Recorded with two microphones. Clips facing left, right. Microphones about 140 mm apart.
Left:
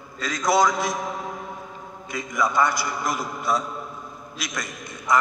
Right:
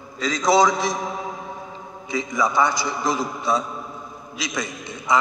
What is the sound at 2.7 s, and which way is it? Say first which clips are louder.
Speech: right 3 dB; 90° right.